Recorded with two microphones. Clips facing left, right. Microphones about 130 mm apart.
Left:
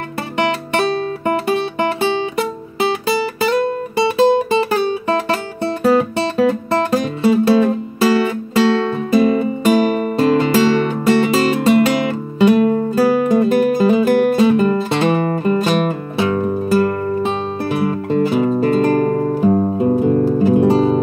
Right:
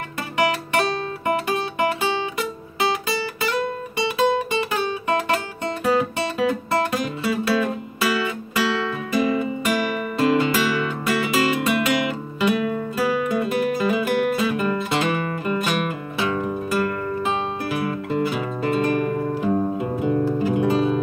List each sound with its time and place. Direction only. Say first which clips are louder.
2.3 s music: left 7 dB; 30° left (ahead or behind)